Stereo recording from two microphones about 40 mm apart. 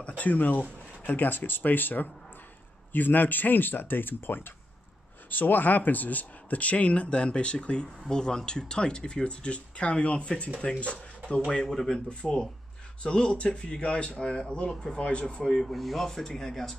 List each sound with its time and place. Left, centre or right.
0.2 s speech: left; by 11.7 s centre
11.7 s speech: centre
12.1 s speech: left
15.4 s speech: centre